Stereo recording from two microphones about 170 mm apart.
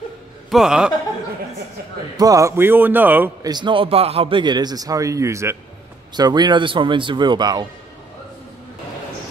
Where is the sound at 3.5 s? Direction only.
30° right (ahead or behind).